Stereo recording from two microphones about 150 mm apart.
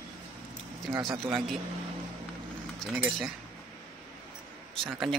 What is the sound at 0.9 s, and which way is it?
Speech, 30° right (ahead or behind).